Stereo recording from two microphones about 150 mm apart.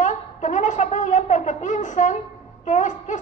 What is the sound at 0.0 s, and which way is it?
Speech, 55° left (ahead or behind).